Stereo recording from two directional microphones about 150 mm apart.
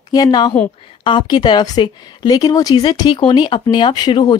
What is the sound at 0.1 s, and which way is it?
Speech, 25° left (ahead or behind).